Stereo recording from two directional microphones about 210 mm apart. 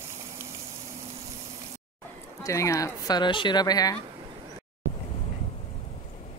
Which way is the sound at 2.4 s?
15° left (ahead or behind).